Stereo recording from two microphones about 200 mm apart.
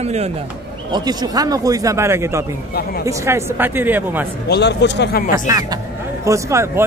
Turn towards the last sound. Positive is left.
turn(degrees=-15)  # may be behind; listen again after turning